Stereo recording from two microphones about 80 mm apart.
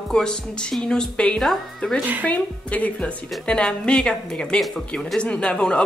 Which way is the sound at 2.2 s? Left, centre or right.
Centre.